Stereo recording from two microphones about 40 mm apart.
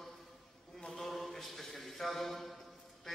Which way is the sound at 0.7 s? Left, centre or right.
Centre.